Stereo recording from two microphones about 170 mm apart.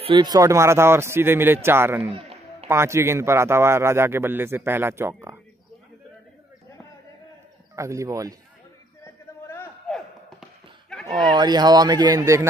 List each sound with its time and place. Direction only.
0.0 s a man's voice: 30° right (ahead or behind)
2.1 s music: 35° right (ahead or behind)
2.7 s a man's voice: 15° right (ahead or behind)
7.7 s speech: 20° right (ahead or behind)
9.0 s a sound: 15° left (ahead or behind)
10.9 s a sound: 5° left (ahead or behind)
11.3 s speech: 25° right (ahead or behind)